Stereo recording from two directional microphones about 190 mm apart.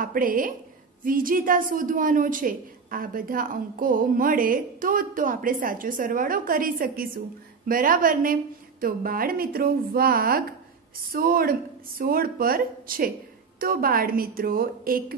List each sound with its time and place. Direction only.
0.0 s a woman's voice: 45° right (ahead or behind)